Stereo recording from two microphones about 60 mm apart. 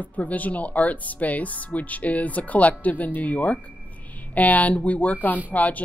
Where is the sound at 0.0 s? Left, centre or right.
Left.